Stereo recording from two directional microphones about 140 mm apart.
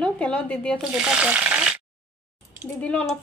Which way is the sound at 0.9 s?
5° right (ahead or behind).